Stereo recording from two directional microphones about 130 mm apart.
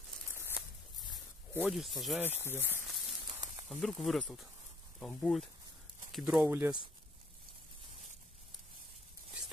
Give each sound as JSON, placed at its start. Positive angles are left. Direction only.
{"t": 0.3, "sound": "a sound", "side_deg": 20}
{"t": 1.6, "sound": "speech", "side_deg": 0}
{"t": 2.2, "sound": "speech", "side_deg": 15}
{"t": 3.6, "sound": "speech", "side_deg": 5}